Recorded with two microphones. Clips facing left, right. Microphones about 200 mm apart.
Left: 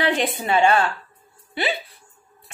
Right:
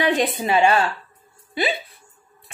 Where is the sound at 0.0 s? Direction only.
15° right (ahead or behind).